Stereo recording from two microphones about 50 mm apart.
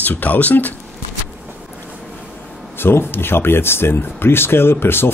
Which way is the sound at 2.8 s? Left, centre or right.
Left.